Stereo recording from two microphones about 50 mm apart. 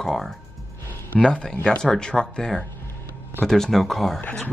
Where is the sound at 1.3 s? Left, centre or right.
Left; by 4.2 s centre.